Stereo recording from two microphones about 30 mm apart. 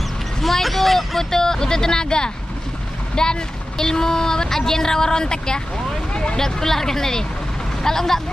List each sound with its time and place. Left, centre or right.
0.4 s speech: centre
1.3 s speech: centre
6.3 s speech: centre